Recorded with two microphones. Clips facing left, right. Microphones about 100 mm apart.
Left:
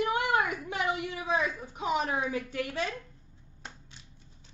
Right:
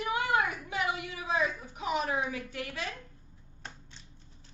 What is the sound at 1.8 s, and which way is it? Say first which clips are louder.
Speech: left 2 dB; 30° left (ahead or behind).